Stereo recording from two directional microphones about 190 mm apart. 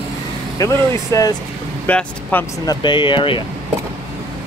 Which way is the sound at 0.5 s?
15° left (ahead or behind).